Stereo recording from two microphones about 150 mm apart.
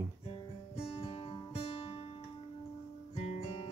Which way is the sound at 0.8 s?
40° left (ahead or behind).